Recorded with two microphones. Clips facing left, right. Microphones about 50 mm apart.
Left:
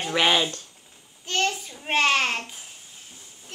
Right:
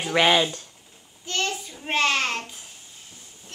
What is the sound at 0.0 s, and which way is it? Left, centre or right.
A child's voice, centre.